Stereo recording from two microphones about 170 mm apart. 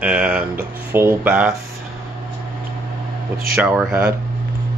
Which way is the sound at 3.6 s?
5° right (ahead or behind).